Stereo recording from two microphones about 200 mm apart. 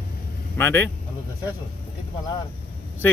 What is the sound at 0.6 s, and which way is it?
Speech, 10° left (ahead or behind).